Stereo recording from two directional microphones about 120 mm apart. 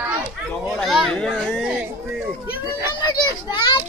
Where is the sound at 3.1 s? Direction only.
40° left (ahead or behind).